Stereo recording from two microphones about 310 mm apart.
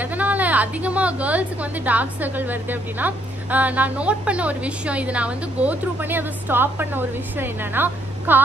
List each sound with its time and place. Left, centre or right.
0.0 s a woman's voice: centre